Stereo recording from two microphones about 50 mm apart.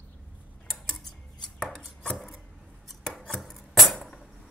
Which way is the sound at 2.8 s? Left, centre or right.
Centre.